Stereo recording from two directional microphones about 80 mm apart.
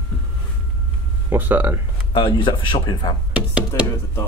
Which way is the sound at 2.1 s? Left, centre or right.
Left.